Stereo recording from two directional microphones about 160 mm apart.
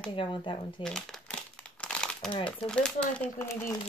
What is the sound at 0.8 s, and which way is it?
Crumpling, 5° left (ahead or behind).